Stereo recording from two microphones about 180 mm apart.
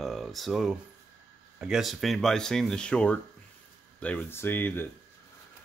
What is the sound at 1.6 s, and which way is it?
Speech, 5° right (ahead or behind).